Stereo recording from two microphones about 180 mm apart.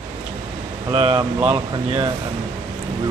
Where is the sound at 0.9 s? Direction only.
30° right (ahead or behind).